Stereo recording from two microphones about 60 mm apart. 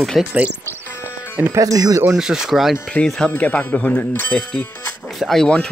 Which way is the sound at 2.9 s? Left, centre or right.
Centre.